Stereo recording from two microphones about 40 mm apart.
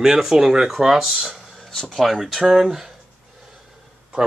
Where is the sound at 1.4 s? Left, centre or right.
Centre.